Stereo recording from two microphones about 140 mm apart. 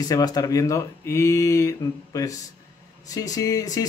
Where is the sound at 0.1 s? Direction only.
25° left (ahead or behind).